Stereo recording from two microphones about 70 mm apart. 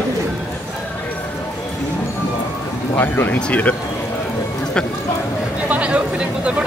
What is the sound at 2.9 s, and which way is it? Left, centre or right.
Speech, left.